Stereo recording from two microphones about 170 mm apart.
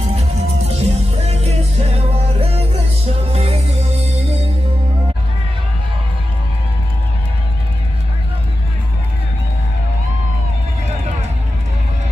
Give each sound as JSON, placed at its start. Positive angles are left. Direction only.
{"t": 0.0, "sound": "music", "side_deg": -40}